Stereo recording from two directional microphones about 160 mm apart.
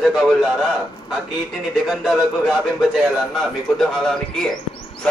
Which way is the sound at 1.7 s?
Centre (ahead or behind).